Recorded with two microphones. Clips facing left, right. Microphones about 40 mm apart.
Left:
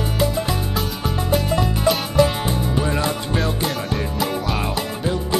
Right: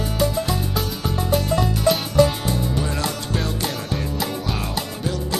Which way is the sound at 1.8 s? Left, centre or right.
Centre.